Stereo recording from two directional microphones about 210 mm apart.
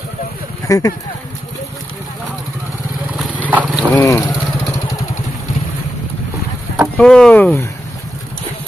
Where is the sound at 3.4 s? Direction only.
5° right (ahead or behind).